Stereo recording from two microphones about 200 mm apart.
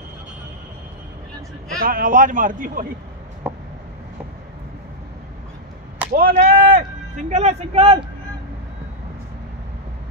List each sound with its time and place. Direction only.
1.8 s a man's voice: 45° right (ahead or behind)
3.4 s a sound: 10° right (ahead or behind)
6.1 s speech: 45° right (ahead or behind)
7.2 s speech: 35° right (ahead or behind)